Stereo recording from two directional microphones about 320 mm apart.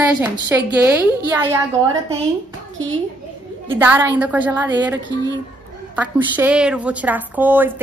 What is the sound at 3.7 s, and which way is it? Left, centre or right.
A woman's voice, centre.